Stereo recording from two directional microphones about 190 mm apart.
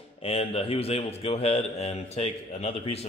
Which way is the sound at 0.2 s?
30° left (ahead or behind).